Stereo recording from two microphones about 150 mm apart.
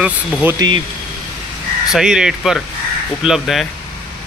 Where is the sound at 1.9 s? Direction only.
5° right (ahead or behind).